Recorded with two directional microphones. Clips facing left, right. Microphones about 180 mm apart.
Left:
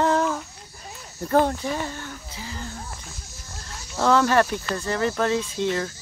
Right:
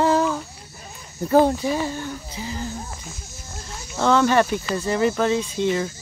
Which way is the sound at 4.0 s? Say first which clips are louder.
Right 1 dB; 5° left (ahead or behind).